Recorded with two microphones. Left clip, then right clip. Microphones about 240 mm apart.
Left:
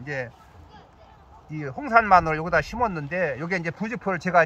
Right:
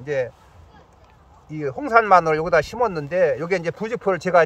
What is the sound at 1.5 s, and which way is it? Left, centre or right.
Speech, right.